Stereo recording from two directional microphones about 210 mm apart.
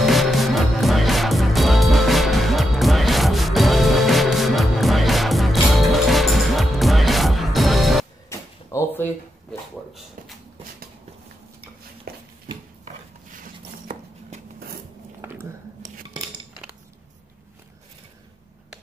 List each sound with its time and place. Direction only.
0.0 s music: centre (ahead or behind)
8.3 s drawer open or close: 15° left (ahead or behind)
12.1 s a sound: 45° right (ahead or behind)
15.2 s dishes: 15° right (ahead or behind)